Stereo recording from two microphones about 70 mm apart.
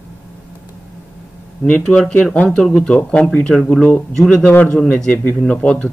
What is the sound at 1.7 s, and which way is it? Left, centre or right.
Speech, centre.